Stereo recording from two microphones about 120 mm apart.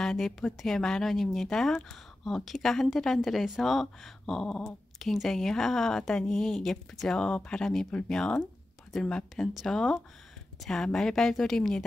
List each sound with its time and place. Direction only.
0.0 s speech: 5° left (ahead or behind)